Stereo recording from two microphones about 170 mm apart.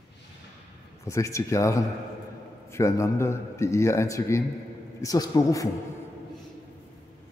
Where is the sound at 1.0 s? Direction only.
15° left (ahead or behind).